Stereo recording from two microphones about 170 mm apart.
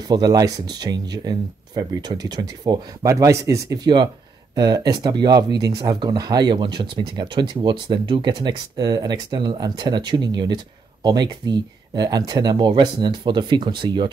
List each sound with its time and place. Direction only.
0.1 s speech: 20° right (ahead or behind)